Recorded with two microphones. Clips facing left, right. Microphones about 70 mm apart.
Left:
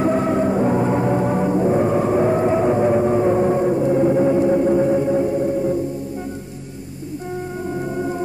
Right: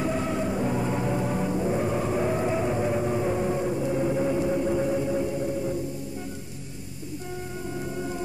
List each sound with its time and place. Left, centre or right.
0.0 s music: left